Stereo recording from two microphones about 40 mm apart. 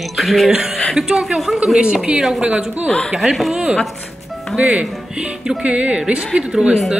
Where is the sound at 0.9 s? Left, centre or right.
Centre.